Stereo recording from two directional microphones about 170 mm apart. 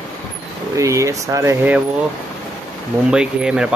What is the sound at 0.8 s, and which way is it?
Speech, 20° right (ahead or behind).